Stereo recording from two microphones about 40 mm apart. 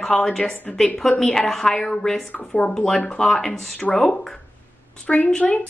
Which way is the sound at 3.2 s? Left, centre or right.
Centre.